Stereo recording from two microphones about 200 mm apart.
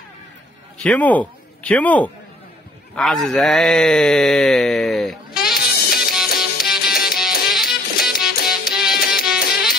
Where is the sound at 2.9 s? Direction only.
Centre (ahead or behind).